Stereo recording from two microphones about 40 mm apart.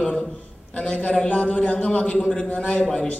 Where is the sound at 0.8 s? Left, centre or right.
Left.